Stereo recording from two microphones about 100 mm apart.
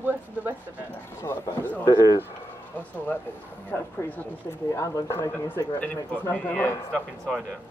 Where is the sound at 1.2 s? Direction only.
25° left (ahead or behind).